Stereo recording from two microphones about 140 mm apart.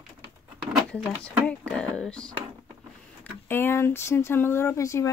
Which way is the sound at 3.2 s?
15° left (ahead or behind).